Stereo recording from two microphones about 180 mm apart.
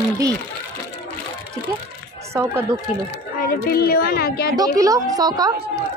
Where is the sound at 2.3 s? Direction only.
15° right (ahead or behind).